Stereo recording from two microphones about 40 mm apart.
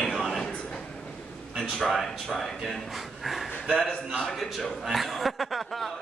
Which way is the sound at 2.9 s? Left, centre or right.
Centre.